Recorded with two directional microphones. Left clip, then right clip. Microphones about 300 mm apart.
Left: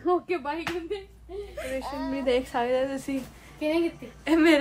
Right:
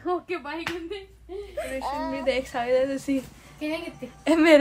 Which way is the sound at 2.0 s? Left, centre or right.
Right.